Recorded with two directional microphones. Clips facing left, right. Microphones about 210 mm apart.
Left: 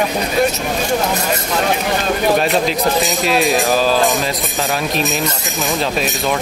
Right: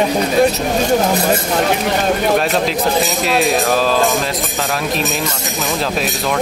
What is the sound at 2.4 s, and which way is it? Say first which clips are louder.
Speech: even; centre (ahead or behind).